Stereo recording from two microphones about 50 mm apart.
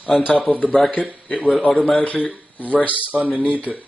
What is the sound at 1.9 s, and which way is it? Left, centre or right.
Speech, left.